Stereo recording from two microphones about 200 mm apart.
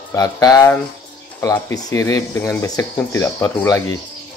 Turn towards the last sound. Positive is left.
turn(degrees=15)  # may be behind; listen again after turning